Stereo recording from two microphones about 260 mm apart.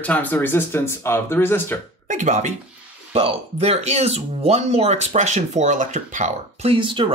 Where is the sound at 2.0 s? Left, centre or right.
Right.